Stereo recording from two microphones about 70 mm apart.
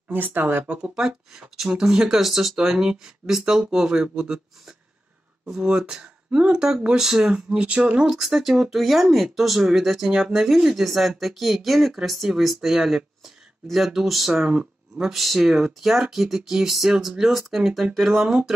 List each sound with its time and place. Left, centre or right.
0.1 s speech: right; by 18.5 s centre